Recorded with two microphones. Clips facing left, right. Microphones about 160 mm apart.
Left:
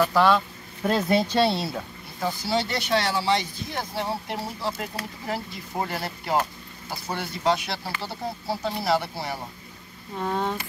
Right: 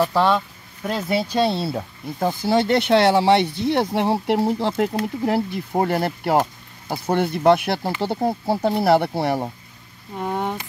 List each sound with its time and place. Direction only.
0.0 s speech: 25° right (ahead or behind)
0.8 s speech: centre (ahead or behind); by 1.9 s 30° right (ahead or behind)
2.1 s speech: 50° right (ahead or behind)
10.1 s speech: 15° right (ahead or behind)